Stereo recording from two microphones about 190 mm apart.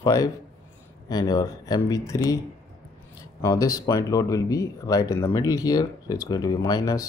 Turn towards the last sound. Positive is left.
turn(degrees=20)  # may be behind; listen again after turning